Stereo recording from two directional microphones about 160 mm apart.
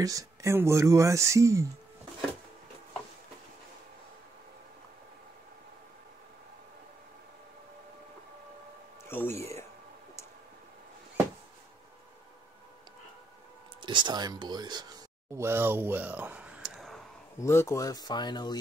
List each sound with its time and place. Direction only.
0.0 s speech: 20° right (ahead or behind)
9.1 s a sound: 15° left (ahead or behind)
13.7 s speech: 30° right (ahead or behind)
15.3 s speech: 15° right (ahead or behind)
17.4 s speech: 15° left (ahead or behind)